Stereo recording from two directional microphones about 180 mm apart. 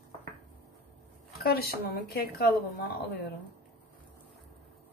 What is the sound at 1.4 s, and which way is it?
Speech, 60° left (ahead or behind).